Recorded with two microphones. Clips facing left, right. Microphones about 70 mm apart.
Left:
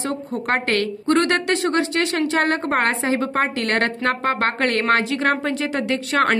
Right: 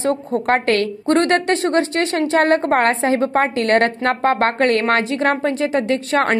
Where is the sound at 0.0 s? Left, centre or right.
Right.